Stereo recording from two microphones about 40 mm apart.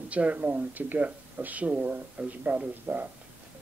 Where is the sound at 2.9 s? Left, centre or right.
Right.